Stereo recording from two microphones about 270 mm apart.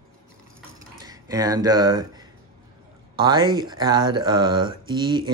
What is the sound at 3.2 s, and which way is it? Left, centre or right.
Speech, centre.